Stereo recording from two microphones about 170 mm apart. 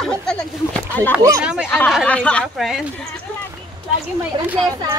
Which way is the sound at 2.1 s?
5° left (ahead or behind).